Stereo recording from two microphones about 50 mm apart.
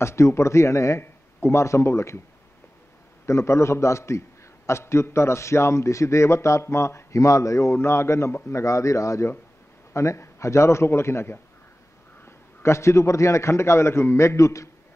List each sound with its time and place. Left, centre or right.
0.0 s a man's voice: left
1.0 s speech: left
3.3 s a man's voice: left
4.6 s a man's voice: left
7.7 s a man's voice: left
8.5 s speech: left
9.9 s a man's voice: left